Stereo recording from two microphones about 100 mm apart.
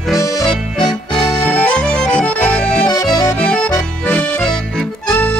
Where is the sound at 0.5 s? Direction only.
5° left (ahead or behind).